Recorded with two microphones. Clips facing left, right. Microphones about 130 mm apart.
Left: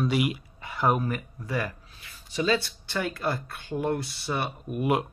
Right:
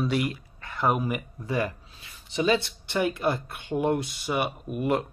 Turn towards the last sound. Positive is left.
turn(degrees=5)  # may be behind; listen again after turning